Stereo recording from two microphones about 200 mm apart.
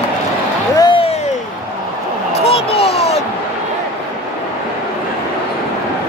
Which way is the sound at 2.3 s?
30° left (ahead or behind).